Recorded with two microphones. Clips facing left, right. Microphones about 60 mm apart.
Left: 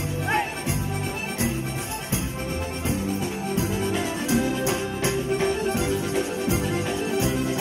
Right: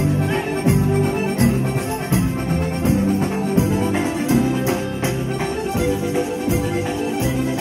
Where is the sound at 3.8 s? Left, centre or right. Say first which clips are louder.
Right 6 dB; right.